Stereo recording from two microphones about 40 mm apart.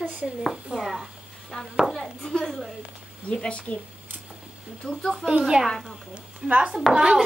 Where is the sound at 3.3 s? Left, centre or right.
Left.